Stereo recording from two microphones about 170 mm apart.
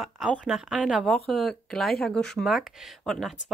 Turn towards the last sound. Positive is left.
turn(degrees=0)  # may be behind; listen again after turning